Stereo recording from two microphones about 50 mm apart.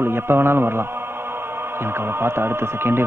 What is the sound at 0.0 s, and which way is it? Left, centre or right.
Music, right.